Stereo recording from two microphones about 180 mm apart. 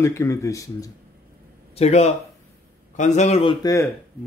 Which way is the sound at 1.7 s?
35° left (ahead or behind).